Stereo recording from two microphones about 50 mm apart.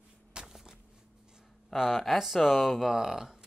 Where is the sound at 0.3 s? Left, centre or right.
Centre.